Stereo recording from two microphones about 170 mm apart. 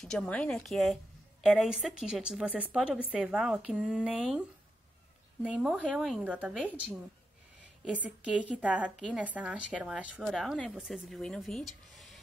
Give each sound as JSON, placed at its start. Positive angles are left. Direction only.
{"t": 0.0, "sound": "a woman's voice", "side_deg": 0}